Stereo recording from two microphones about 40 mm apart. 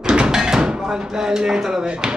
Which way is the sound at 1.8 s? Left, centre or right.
Right.